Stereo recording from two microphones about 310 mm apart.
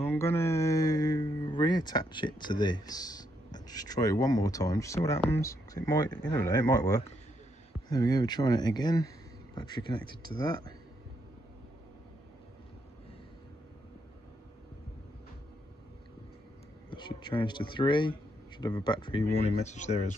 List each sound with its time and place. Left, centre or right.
0.0 s speech: centre
16.9 s speech: centre